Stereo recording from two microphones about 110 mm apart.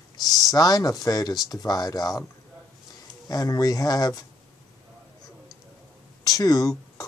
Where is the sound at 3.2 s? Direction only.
35° left (ahead or behind).